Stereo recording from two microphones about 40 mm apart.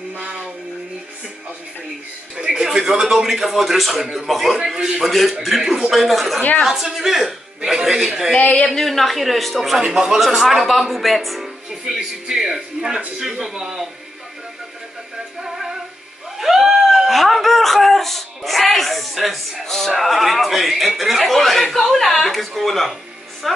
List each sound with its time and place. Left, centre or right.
2.3 s a man's voice: centre
4.6 s a man's voice: centre
5.0 s a woman's voice: centre
5.7 s a man's voice: centre
5.9 s a woman's voice: centre
6.6 s a man's voice: centre
8.4 s a woman's voice: left
8.6 s a woman's voice: centre
9.8 s a man's voice: centre
10.1 s a woman's voice: centre
15.4 s synthetic singing: centre
16.3 s a sound: centre
19.6 s music: centre
20.0 s a woman's voice: centre